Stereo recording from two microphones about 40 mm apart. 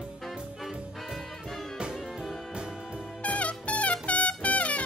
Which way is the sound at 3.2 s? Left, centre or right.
Left.